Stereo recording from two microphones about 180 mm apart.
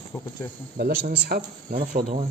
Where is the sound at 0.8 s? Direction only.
55° right (ahead or behind).